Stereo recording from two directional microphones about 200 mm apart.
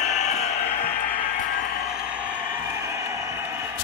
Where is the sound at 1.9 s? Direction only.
5° right (ahead or behind).